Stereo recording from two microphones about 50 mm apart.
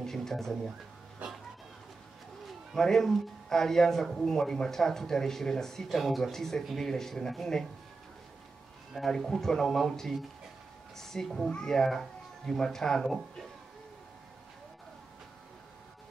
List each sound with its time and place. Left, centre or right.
0.0 s speech: centre
2.4 s speech: centre
8.9 s speech: centre